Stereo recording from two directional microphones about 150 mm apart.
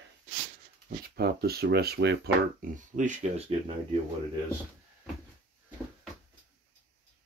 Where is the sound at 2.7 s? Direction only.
55° right (ahead or behind).